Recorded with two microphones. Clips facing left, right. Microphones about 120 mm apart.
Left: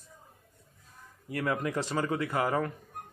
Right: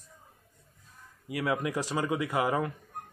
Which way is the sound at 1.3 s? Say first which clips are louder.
Right 1 dB; 10° right (ahead or behind).